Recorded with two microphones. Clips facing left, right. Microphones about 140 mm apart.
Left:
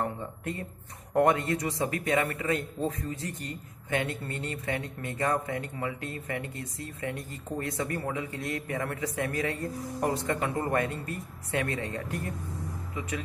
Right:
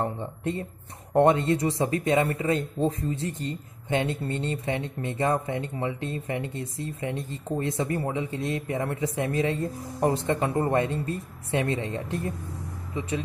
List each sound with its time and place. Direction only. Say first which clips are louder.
0.0 s speech: right 4 dB; 25° right (ahead or behind)